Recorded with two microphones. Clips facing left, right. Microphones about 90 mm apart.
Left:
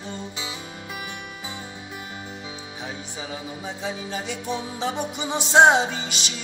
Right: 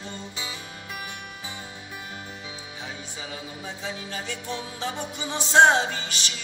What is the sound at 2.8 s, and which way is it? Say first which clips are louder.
Music: left 3 dB; 15° left (ahead or behind).